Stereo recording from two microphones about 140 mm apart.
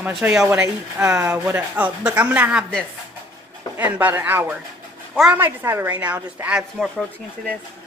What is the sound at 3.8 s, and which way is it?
Speech, 15° right (ahead or behind).